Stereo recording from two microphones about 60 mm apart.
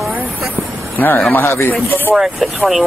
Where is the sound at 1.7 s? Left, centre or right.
Left.